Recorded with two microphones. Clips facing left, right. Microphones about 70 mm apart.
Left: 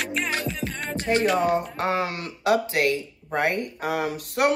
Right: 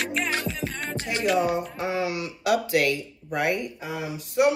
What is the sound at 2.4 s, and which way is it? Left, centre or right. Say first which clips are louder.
Speech: left 1 dB; left.